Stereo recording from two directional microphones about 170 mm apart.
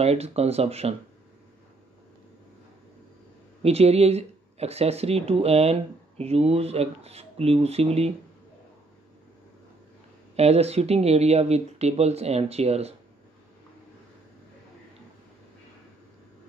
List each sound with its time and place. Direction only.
0.0 s speech: 40° right (ahead or behind)
3.6 s speech: 35° right (ahead or behind)
10.3 s speech: 40° right (ahead or behind)